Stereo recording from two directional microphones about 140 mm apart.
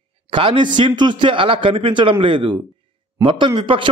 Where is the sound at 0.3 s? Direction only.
35° right (ahead or behind).